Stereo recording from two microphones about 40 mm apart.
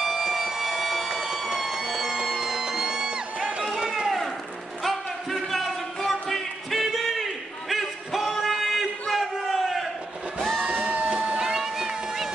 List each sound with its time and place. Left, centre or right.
0.0 s siren: centre
1.1 s a sound: centre
1.4 s music: centre
3.7 s run: centre
4.8 s a sound: centre
10.9 s music: right
11.4 s cat: centre